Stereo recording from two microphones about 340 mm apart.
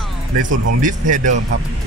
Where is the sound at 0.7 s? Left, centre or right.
Right.